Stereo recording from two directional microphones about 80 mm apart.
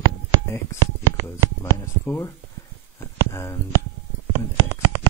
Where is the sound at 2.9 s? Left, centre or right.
Left.